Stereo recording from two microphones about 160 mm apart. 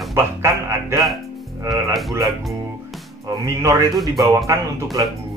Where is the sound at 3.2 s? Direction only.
20° right (ahead or behind).